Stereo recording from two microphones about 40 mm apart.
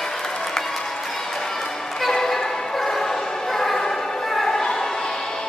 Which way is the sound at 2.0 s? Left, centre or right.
Centre.